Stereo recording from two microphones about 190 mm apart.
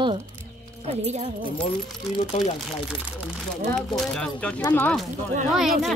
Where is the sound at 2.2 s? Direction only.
35° left (ahead or behind).